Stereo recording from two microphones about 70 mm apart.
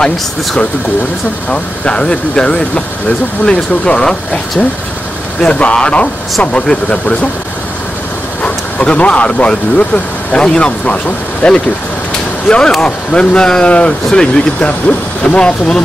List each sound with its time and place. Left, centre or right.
1.5 s speech: centre
8.4 s speech: centre